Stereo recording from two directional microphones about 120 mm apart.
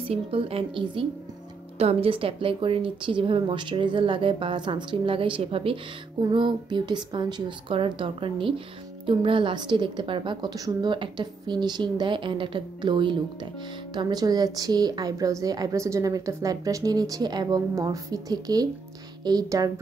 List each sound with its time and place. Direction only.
0.1 s a woman's voice: 50° right (ahead or behind); by 19.7 s 30° right (ahead or behind)